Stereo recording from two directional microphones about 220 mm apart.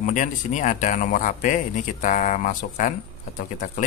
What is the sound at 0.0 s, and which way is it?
Mantra, 35° left (ahead or behind).